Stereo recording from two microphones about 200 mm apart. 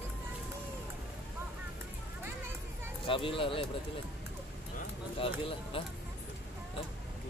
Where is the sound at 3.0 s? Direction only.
25° left (ahead or behind).